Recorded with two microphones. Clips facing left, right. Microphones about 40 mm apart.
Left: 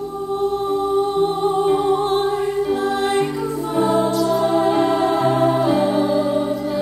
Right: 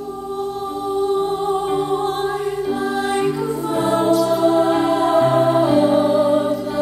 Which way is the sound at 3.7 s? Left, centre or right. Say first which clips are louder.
Right 1 dB; right.